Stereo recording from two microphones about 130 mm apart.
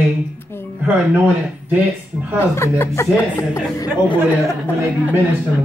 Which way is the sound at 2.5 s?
20° left (ahead or behind).